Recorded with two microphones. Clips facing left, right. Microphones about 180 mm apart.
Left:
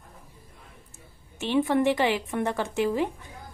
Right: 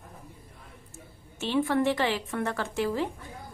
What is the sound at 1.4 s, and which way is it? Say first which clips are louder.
A woman's voice: left 2 dB; 20° left (ahead or behind).